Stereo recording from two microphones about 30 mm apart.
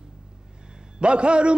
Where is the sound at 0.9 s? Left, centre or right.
Right.